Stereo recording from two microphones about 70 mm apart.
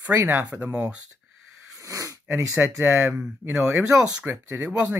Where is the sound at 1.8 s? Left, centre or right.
Right.